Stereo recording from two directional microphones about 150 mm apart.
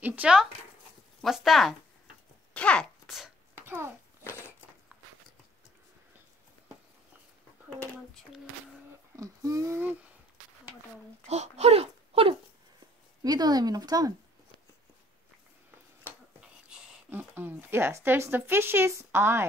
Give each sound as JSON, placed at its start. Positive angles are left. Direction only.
{"t": 0.0, "sound": "speech", "side_deg": -10}
{"t": 3.6, "sound": "speech", "side_deg": -15}
{"t": 7.8, "sound": "a sound", "side_deg": 0}
{"t": 9.1, "sound": "a sound", "side_deg": -20}
{"t": 11.2, "sound": "speech", "side_deg": -45}
{"t": 13.2, "sound": "speech", "side_deg": -25}
{"t": 16.3, "sound": "speech", "side_deg": -5}